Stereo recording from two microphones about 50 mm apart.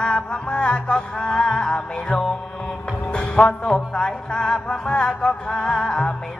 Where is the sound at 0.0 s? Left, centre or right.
Left.